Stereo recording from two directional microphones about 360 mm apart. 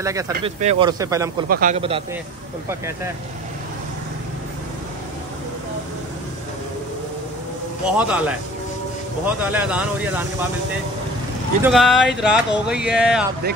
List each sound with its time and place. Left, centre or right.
0.0 s speech: centre
1.5 s speech: right
7.8 s speech: centre
11.6 s speech: centre